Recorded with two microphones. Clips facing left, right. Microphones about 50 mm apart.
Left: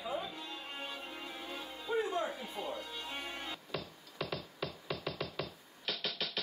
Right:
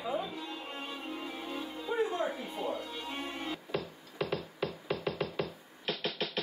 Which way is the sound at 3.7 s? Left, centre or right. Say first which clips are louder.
Right 6 dB; right.